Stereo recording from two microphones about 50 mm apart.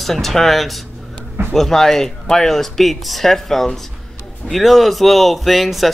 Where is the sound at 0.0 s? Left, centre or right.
Centre.